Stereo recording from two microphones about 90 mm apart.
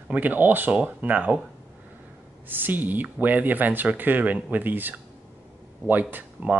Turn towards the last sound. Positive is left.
turn(degrees=-15)  # may be behind; listen again after turning